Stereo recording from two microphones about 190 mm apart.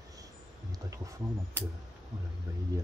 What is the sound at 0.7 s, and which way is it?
Speech, 15° right (ahead or behind).